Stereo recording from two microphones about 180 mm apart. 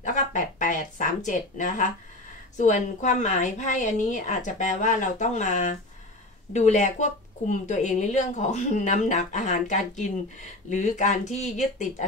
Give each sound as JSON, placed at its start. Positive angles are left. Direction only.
{"t": 0.0, "sound": "a woman's voice", "side_deg": 45}